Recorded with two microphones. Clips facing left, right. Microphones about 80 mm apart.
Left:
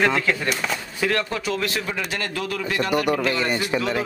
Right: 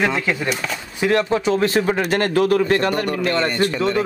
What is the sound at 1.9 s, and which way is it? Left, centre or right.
A man's voice, right.